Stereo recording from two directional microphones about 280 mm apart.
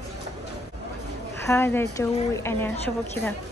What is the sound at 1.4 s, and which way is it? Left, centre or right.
A woman's voice, centre.